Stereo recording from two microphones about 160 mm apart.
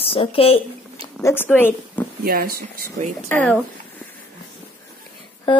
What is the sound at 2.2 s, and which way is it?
Speech, 70° right (ahead or behind).